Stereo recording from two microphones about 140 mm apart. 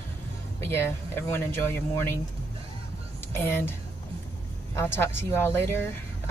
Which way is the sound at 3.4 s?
15° left (ahead or behind).